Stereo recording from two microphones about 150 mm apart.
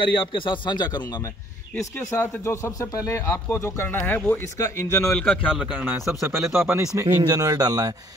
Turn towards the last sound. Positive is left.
turn(degrees=-25)  # may be behind; listen again after turning